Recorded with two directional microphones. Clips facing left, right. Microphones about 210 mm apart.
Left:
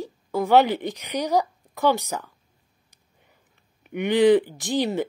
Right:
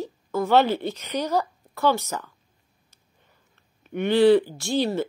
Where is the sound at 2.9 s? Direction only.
15° left (ahead or behind).